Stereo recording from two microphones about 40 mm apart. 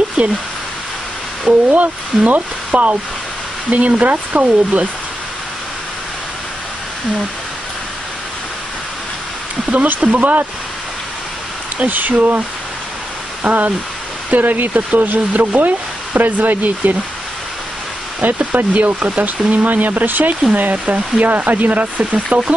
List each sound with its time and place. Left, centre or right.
0.2 s speech: right
1.4 s speech: right
9.7 s speech: right
11.8 s speech: right
18.2 s speech: right
20.7 s speech: right